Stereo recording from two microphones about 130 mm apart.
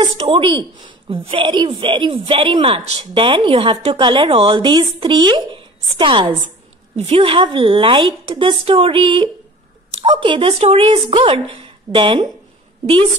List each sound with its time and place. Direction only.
0.0 s a woman's voice: 45° right (ahead or behind)
3.9 s a woman's voice: 35° right (ahead or behind)
7.0 s a woman's voice: 50° right (ahead or behind)